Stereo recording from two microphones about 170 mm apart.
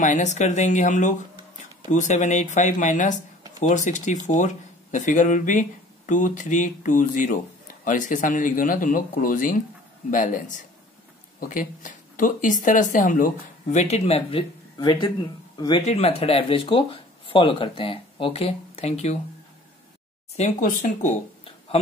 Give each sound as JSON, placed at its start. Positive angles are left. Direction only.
{"t": 0.0, "sound": "speech", "side_deg": 45}
{"t": 14.8, "sound": "speech", "side_deg": 25}
{"t": 15.9, "sound": "speech", "side_deg": 35}
{"t": 20.3, "sound": "speech", "side_deg": 45}